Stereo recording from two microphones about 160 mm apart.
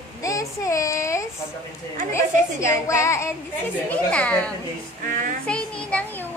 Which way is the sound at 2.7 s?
20° left (ahead or behind).